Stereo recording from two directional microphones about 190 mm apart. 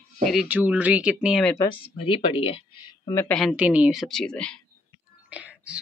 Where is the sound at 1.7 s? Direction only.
30° left (ahead or behind).